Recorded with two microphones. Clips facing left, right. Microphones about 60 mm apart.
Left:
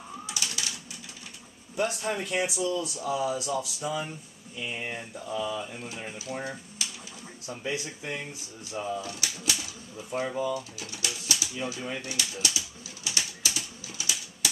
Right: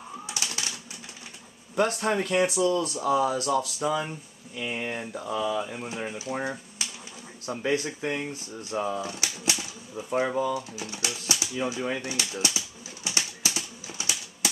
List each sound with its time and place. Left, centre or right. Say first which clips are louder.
1.8 s speech: right 4 dB; right
5.9 s speech: right 5 dB; right
7.4 s speech: right 6 dB; right
9.2 s pigeon: right 2 dB; right
10.0 s speech: right 4 dB; right
12.1 s pigeon: right 2 dB; right